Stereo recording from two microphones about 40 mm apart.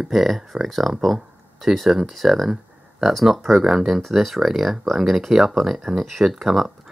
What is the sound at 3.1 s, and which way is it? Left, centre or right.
Speech, centre.